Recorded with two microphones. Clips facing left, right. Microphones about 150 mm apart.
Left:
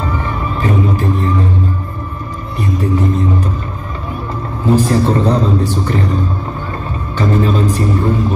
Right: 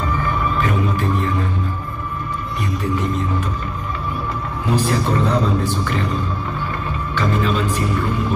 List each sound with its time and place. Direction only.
0.6 s music: 35° left (ahead or behind)
4.6 s a man's voice: 35° left (ahead or behind)
7.2 s a man's voice: 35° left (ahead or behind)